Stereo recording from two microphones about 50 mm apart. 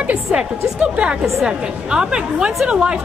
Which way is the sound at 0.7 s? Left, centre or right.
Right.